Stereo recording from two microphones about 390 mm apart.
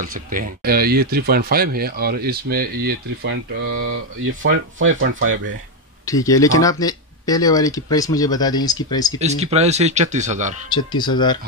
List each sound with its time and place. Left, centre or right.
0.0 s speech: right
6.0 s speech: centre
9.2 s speech: centre
10.7 s speech: centre